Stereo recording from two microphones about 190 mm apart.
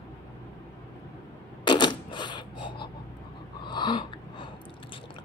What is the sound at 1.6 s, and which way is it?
Cash register, 25° left (ahead or behind).